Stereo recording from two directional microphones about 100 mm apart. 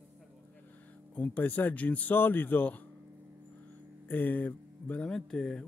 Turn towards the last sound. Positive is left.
turn(degrees=5)  # may be behind; listen again after turning